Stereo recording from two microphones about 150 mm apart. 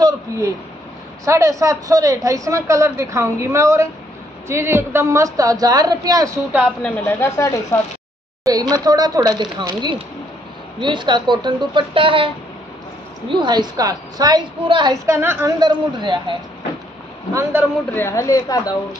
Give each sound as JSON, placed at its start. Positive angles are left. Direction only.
{"t": 1.2, "sound": "speech", "side_deg": -20}
{"t": 6.8, "sound": "speech", "side_deg": 15}
{"t": 8.5, "sound": "a woman's voice", "side_deg": -25}
{"t": 13.3, "sound": "speech", "side_deg": -30}
{"t": 15.0, "sound": "a woman's voice", "side_deg": -15}
{"t": 15.6, "sound": "a woman's voice", "side_deg": -30}
{"t": 17.3, "sound": "a woman's voice", "side_deg": -15}
{"t": 17.9, "sound": "a woman's voice", "side_deg": 20}